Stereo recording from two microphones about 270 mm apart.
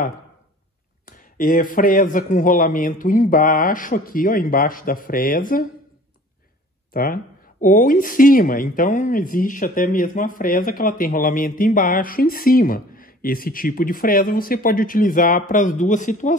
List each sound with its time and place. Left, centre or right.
1.0 s speech: left
6.9 s speech: left